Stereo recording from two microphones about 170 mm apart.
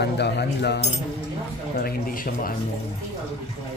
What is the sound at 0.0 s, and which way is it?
Speech, 80° left.